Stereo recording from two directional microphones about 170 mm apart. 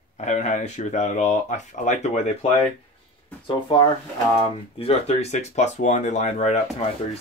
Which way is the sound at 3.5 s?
30° left (ahead or behind).